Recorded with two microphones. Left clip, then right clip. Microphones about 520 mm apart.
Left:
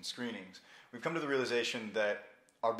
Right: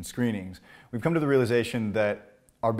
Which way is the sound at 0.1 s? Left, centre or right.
Right.